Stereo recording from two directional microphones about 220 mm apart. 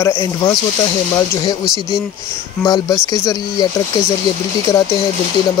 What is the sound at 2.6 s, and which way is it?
Speech, 15° left (ahead or behind).